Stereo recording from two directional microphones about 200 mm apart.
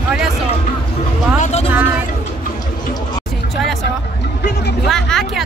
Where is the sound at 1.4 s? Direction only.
35° left (ahead or behind).